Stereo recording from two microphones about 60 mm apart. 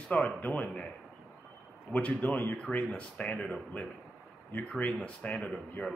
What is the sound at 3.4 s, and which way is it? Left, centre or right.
Speech, centre.